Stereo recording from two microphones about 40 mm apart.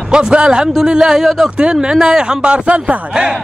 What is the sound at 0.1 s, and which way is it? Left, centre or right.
A man's voice, right.